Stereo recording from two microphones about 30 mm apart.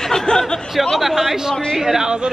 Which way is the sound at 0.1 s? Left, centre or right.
Left.